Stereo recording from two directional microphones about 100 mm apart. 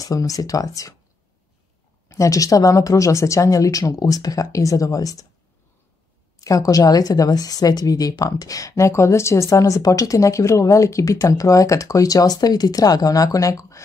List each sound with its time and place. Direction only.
0.0 s speech: 35° left (ahead or behind)
2.0 s speech: 30° left (ahead or behind)
6.4 s speech: 35° left (ahead or behind)